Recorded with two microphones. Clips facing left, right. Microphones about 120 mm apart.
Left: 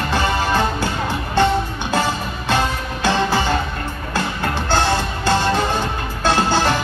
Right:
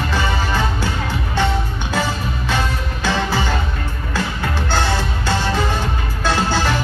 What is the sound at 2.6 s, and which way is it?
Music, 20° left (ahead or behind).